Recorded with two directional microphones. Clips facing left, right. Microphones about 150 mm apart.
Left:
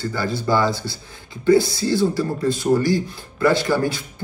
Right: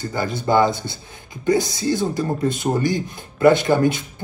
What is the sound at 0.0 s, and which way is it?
Speech, 20° right (ahead or behind).